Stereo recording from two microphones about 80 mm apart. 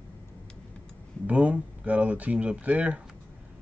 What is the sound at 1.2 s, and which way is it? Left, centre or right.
Speech, centre.